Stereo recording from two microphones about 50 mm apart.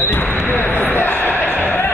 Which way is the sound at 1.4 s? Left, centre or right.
Left.